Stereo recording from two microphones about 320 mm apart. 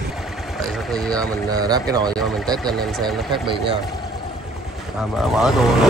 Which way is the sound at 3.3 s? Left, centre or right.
Centre.